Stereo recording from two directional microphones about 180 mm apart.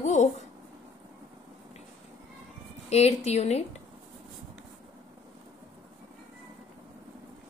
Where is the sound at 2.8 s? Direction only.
35° left (ahead or behind).